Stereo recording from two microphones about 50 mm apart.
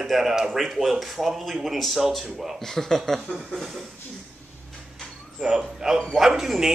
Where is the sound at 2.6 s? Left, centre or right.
Centre.